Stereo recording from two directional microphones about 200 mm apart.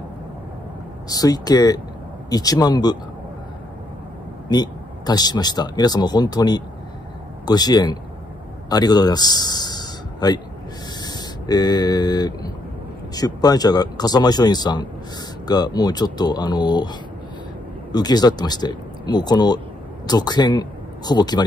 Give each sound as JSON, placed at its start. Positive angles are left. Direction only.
{"t": 1.0, "sound": "speech", "side_deg": 20}
{"t": 4.5, "sound": "speech", "side_deg": 20}
{"t": 17.9, "sound": "speech", "side_deg": 20}